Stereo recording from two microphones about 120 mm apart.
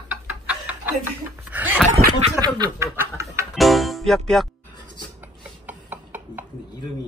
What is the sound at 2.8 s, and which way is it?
Snicker, 20° right (ahead or behind).